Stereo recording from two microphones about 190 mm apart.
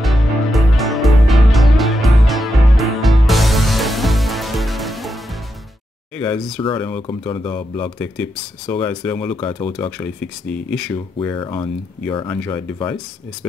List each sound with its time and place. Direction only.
0.0 s music: centre (ahead or behind)
6.1 s speech: 5° left (ahead or behind)
7.0 s speech: 25° left (ahead or behind)
8.2 s speech: 5° left (ahead or behind)
9.5 s speech: 25° left (ahead or behind)
9.8 s speech: 5° left (ahead or behind)
11.1 s speech: 20° left (ahead or behind)